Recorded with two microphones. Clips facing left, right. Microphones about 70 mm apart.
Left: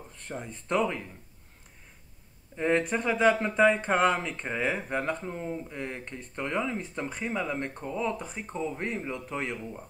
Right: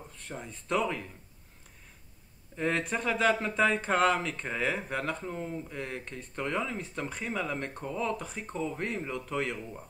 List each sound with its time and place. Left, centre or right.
0.3 s speech: left
2.5 s speech: centre